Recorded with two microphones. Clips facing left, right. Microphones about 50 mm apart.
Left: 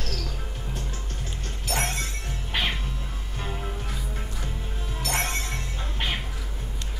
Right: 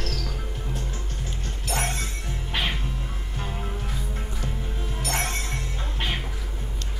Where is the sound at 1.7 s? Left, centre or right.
Centre.